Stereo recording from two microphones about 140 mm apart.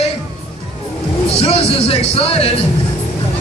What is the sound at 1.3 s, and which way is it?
Music, 45° left (ahead or behind).